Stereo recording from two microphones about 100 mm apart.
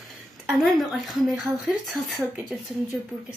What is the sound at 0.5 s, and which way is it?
Speech, centre (ahead or behind).